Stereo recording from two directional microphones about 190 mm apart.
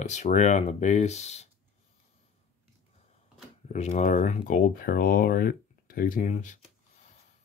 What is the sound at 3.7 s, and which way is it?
Speech, 35° left (ahead or behind).